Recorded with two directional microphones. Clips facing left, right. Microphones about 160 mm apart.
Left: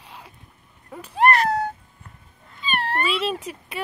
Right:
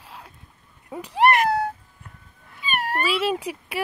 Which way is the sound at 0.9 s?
15° right (ahead or behind).